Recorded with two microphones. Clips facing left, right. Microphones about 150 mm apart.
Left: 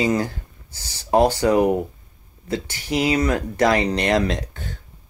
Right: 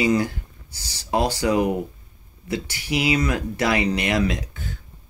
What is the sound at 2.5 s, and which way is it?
Speech, 10° right (ahead or behind).